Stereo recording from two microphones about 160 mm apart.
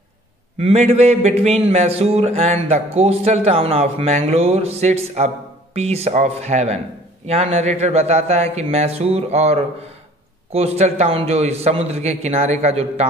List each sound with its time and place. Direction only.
0.6 s a man's voice: 40° right (ahead or behind)